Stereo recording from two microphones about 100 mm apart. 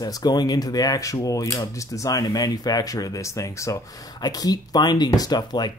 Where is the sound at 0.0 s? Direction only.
40° left (ahead or behind).